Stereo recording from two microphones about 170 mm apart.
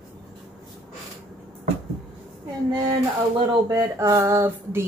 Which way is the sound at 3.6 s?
20° right (ahead or behind).